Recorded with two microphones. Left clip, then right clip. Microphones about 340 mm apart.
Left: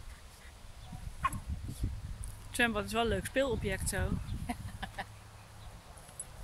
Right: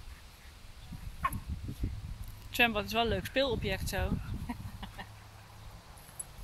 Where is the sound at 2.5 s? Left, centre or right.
Centre.